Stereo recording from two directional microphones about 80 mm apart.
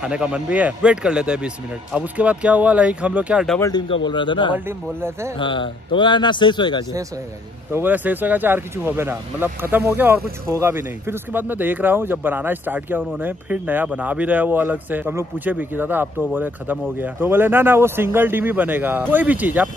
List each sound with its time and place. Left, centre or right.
0.0 s speech: centre
3.7 s a man's voice: left
4.6 s speech: right
5.4 s speech: left
7.7 s speech: right